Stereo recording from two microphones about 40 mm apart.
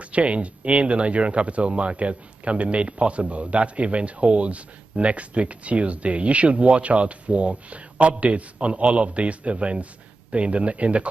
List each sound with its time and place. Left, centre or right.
0.0 s speech: right